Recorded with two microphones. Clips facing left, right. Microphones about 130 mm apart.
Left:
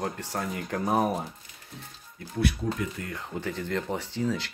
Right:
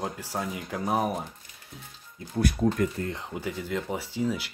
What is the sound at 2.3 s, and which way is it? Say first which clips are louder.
Speech: right 3 dB; 40° right (ahead or behind).